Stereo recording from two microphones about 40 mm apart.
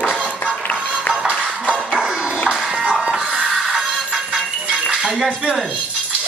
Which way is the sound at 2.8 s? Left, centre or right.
Right.